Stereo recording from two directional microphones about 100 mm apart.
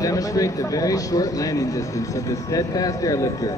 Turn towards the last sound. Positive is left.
turn(degrees=35)  # may be behind; listen again after turning